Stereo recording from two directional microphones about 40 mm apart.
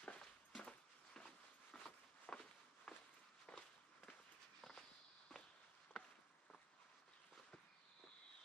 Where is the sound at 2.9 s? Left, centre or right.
Centre.